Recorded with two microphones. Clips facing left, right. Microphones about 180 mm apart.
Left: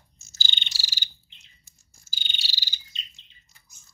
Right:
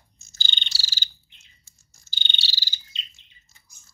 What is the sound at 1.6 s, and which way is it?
Bird, 10° left (ahead or behind).